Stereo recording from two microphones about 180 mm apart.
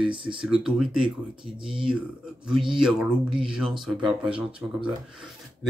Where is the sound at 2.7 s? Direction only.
5° right (ahead or behind).